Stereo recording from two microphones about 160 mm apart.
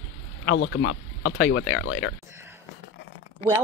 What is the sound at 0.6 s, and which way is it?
Speech, 90° left.